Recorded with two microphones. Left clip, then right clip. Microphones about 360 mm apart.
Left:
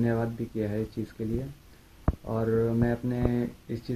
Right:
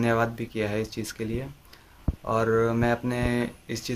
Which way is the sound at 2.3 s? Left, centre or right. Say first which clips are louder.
Right 5 dB; right.